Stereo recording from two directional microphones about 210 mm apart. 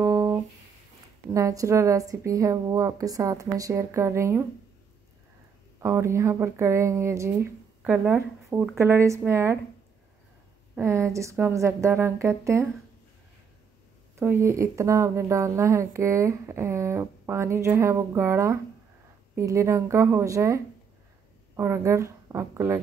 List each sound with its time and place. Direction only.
0.0 s a sound: 15° right (ahead or behind)
1.3 s speech: 15° right (ahead or behind)
5.8 s speech: 10° right (ahead or behind)
10.8 s speech: 15° right (ahead or behind)
14.1 s a woman's voice: 10° right (ahead or behind)